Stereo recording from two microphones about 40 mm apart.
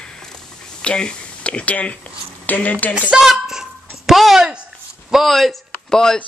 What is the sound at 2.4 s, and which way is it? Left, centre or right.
Speech, left.